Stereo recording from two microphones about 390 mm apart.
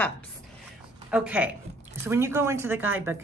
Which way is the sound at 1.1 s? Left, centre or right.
Centre.